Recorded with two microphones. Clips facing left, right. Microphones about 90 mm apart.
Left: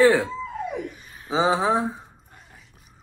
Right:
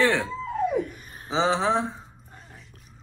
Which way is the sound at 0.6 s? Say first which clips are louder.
Right 5 dB; 40° right (ahead or behind).